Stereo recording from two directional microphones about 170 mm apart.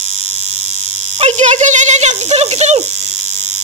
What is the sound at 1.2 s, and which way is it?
Speech, 40° right (ahead or behind).